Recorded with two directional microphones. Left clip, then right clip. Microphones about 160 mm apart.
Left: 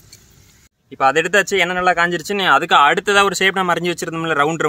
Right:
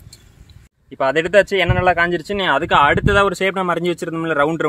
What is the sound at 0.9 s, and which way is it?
Speech, 30° right (ahead or behind).